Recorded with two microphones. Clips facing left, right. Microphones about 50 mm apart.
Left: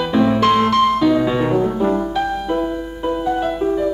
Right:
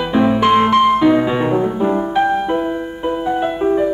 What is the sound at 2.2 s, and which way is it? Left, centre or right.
Music, right.